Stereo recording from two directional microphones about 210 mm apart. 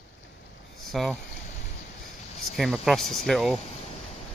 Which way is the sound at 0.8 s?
Centre (ahead or behind).